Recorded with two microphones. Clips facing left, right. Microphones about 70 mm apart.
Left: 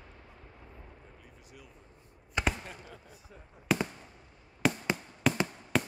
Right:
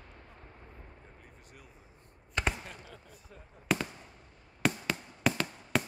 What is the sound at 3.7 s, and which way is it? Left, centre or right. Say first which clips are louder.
Fireworks: left 2 dB; centre.